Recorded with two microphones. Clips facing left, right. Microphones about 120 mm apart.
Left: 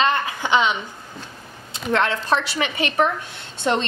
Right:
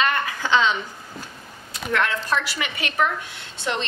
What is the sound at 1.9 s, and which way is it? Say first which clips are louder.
A woman's voice: left 3 dB; 30° left (ahead or behind).